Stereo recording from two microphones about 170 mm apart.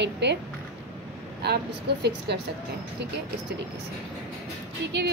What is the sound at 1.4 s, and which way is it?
Speech, 75° right (ahead or behind).